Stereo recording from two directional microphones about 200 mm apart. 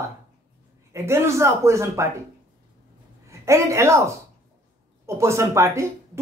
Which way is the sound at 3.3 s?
15° right (ahead or behind).